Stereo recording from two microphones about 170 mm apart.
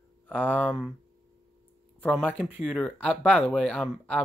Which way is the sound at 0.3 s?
5° left (ahead or behind).